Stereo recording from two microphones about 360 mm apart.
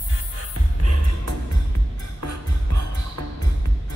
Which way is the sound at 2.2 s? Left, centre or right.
Right.